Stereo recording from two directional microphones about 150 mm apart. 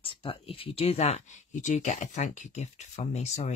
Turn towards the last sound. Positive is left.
turn(degrees=50)  # may be behind; listen again after turning